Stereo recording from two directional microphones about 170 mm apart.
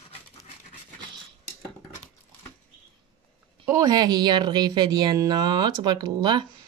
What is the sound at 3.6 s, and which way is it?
Speech, 20° right (ahead or behind).